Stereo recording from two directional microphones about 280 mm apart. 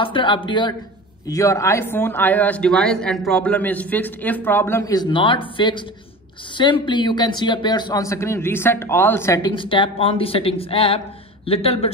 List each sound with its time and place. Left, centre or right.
0.0 s speech: centre